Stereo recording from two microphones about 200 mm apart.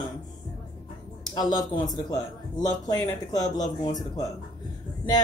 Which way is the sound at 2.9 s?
20° left (ahead or behind).